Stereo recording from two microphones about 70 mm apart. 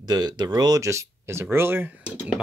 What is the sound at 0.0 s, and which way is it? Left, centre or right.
Speech, right.